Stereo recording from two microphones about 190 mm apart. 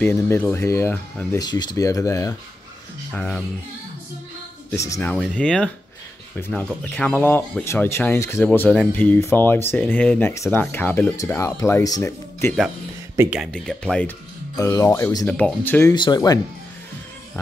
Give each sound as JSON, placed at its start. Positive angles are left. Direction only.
{"t": 0.0, "sound": "speech", "side_deg": 10}
{"t": 3.1, "sound": "speech", "side_deg": 5}
{"t": 4.6, "sound": "speech", "side_deg": 15}
{"t": 5.1, "sound": "speech", "side_deg": 5}
{"t": 13.1, "sound": "speech", "side_deg": -15}
{"t": 13.4, "sound": "speech", "side_deg": 5}
{"t": 14.6, "sound": "speech", "side_deg": 15}
{"t": 15.9, "sound": "speech", "side_deg": 20}